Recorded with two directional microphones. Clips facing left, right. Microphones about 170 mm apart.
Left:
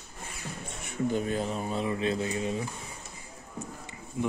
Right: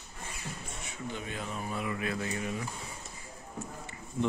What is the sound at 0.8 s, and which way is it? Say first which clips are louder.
Speech: left 11 dB; 45° left (ahead or behind).